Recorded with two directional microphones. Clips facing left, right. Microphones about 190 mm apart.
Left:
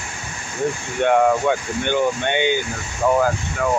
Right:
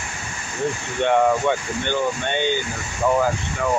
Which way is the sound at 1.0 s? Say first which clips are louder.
Left 2 dB; 10° left (ahead or behind).